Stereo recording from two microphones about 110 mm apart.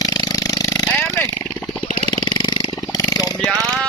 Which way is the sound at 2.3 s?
40° left (ahead or behind).